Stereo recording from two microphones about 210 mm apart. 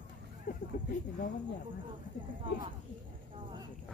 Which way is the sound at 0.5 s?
40° left (ahead or behind).